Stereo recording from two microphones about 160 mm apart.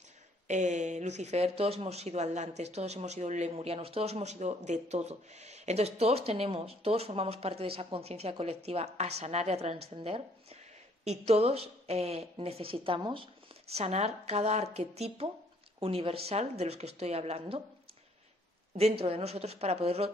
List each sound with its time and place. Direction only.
0.5 s speech: 50° right (ahead or behind)
18.8 s speech: 40° right (ahead or behind)